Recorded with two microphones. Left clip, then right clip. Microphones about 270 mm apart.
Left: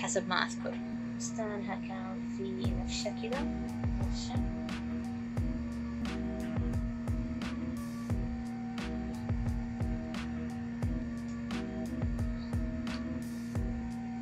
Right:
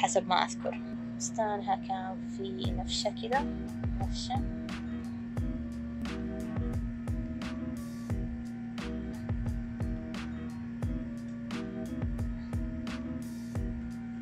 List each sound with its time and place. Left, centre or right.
0.0 s speech: right